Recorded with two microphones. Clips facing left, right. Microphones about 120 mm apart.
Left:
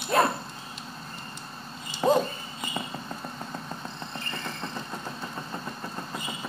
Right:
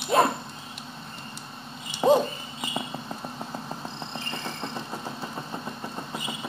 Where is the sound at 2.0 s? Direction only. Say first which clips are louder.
Right 3 dB; centre (ahead or behind).